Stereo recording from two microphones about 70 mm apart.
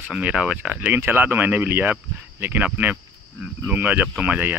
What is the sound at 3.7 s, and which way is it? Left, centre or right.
Speech, right.